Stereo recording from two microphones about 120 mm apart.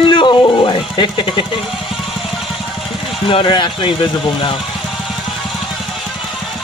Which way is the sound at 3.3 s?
40° left (ahead or behind).